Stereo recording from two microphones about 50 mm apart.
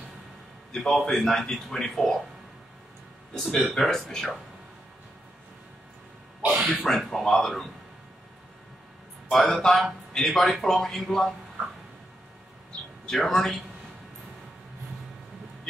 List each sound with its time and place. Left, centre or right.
0.9 s a man's voice: centre
3.5 s a man's voice: centre
6.4 s a sound: right
6.7 s a man's voice: centre
9.3 s a man's voice: centre
13.0 s speech: centre